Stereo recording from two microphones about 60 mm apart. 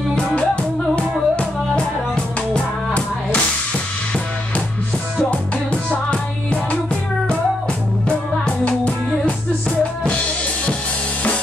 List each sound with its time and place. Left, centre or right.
0.9 s music: centre
5.3 s music: centre
8.5 s music: centre